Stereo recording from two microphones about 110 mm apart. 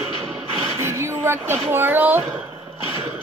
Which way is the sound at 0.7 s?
25° right (ahead or behind).